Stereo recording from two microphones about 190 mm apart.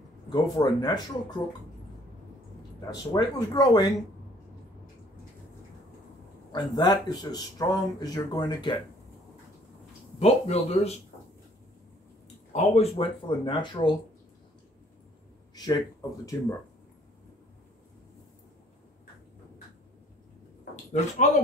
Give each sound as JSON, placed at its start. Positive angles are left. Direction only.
{"t": 0.3, "sound": "speech", "side_deg": 20}
{"t": 2.9, "sound": "speech", "side_deg": 20}
{"t": 6.7, "sound": "speech", "side_deg": 20}
{"t": 10.1, "sound": "speech", "side_deg": 35}
{"t": 12.5, "sound": "speech", "side_deg": 30}
{"t": 15.5, "sound": "speech", "side_deg": 20}